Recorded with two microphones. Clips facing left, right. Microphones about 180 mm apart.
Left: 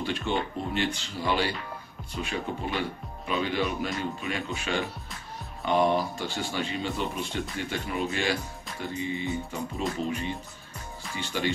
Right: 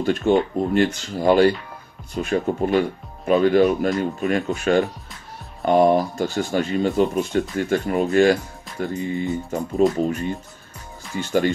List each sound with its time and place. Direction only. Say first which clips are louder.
0.0 s speech: right 11 dB; 45° right (ahead or behind)